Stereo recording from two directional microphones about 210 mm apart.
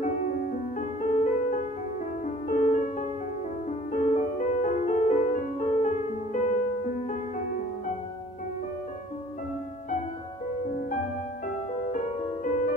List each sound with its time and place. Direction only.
0.0 s music: 40° left (ahead or behind)
11.8 s music: 35° left (ahead or behind)